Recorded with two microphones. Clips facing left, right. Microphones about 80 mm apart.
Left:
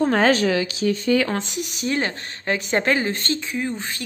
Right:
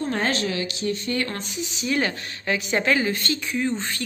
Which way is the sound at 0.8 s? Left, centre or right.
Left.